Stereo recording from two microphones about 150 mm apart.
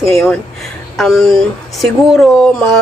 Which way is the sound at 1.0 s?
Centre (ahead or behind).